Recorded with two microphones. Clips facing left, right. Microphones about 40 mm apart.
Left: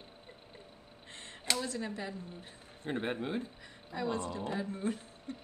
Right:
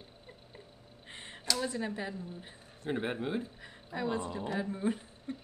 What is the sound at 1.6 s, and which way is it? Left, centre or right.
A woman's voice, centre.